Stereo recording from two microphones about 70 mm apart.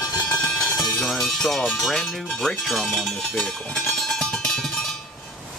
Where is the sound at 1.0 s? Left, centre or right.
Centre.